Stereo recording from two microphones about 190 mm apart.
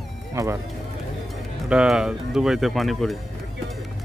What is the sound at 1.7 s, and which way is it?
Speech, 5° right (ahead or behind).